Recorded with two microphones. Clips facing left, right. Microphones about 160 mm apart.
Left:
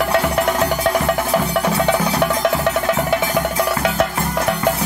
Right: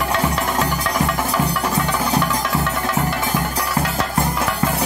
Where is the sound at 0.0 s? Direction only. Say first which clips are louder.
Left 4 dB; 60° left (ahead or behind).